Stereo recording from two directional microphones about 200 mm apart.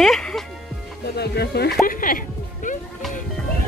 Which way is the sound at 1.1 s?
55° left (ahead or behind).